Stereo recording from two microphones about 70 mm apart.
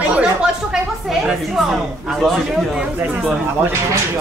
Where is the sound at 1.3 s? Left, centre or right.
Centre.